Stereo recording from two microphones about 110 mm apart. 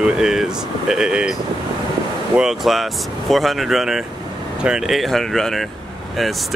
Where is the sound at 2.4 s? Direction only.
Centre (ahead or behind).